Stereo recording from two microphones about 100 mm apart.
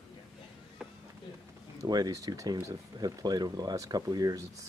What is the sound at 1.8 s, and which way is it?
Speech, 40° right (ahead or behind).